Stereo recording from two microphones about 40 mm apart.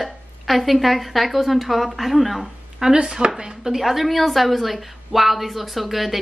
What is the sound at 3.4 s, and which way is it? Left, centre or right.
A woman's voice, centre.